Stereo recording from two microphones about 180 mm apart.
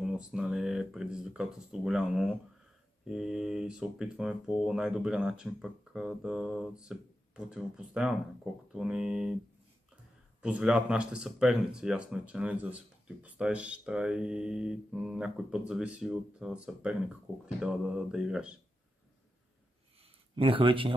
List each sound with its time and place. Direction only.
0.0 s speech: 5° right (ahead or behind)
10.4 s speech: 5° right (ahead or behind)
20.3 s speech: 30° right (ahead or behind)